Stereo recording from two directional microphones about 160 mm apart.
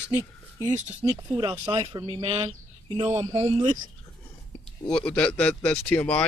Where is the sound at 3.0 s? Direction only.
40° right (ahead or behind).